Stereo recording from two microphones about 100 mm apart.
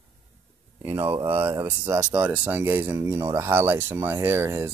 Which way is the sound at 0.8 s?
30° right (ahead or behind).